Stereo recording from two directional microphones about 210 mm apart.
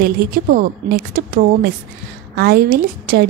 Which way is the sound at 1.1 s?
45° right (ahead or behind).